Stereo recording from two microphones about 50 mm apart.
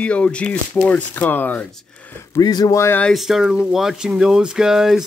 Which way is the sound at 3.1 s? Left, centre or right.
Centre.